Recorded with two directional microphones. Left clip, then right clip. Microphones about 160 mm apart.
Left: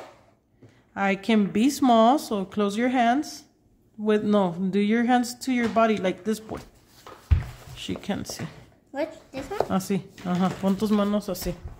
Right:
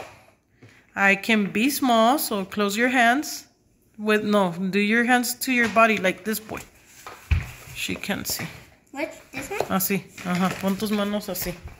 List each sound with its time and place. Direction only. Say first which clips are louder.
0.9 s speech: right 4 dB; 15° left (ahead or behind)
7.7 s speech: right 4 dB; 10° left (ahead or behind)
9.5 s speech: right 1 dB; 15° left (ahead or behind)
10.8 s speech: left 1 dB; 35° left (ahead or behind)